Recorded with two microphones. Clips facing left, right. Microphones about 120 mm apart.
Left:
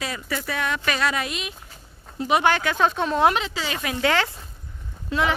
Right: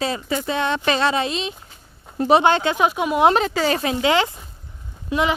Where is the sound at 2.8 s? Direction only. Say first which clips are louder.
Right 2 dB; 10° right (ahead or behind).